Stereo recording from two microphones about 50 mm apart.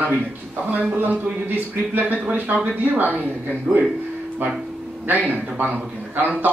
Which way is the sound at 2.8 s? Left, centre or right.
Right.